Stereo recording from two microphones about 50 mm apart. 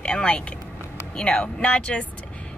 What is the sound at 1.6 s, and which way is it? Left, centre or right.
Speech, left.